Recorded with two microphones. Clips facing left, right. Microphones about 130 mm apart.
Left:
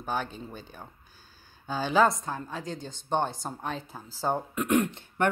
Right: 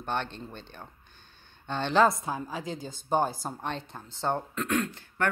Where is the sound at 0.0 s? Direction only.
5° left (ahead or behind).